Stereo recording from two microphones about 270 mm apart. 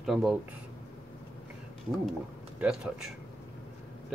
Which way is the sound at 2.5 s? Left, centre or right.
Centre.